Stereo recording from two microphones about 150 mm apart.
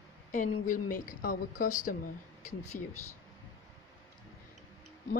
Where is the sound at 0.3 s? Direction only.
60° left (ahead or behind).